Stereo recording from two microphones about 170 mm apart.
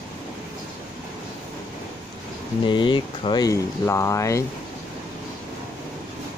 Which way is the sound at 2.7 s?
30° left (ahead or behind).